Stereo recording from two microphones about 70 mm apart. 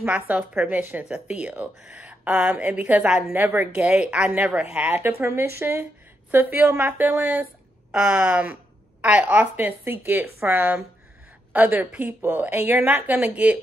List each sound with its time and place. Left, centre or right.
0.0 s speech: centre
3.3 s speech: right
4.8 s speech: right
7.9 s speech: centre